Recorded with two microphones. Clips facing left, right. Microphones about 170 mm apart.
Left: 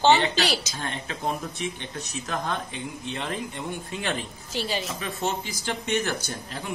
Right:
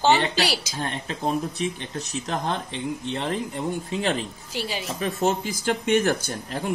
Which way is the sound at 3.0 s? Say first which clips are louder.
Right 3 dB; 35° right (ahead or behind).